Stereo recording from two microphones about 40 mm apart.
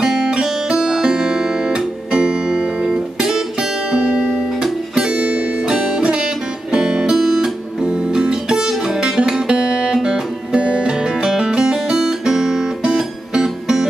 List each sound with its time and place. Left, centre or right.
0.0 s music: centre
3.9 s music: right
4.9 s music: centre
7.2 s music: centre
7.8 s music: right
9.0 s music: right
11.2 s guitar: centre